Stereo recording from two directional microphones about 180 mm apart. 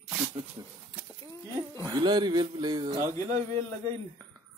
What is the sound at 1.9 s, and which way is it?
Speech, 25° right (ahead or behind).